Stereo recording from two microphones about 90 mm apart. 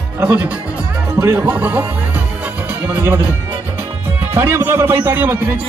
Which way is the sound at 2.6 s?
20° right (ahead or behind).